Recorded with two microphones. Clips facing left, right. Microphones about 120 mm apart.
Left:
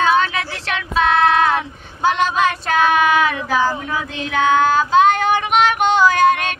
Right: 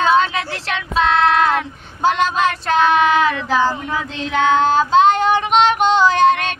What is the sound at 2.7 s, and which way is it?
Child singing, 30° right (ahead or behind).